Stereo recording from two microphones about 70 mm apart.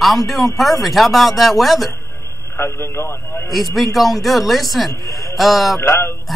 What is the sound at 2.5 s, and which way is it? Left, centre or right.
Speech, left.